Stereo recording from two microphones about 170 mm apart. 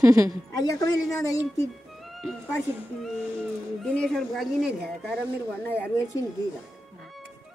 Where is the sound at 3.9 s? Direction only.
5° left (ahead or behind).